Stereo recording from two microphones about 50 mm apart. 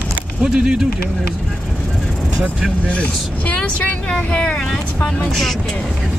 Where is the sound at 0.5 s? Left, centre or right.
Centre.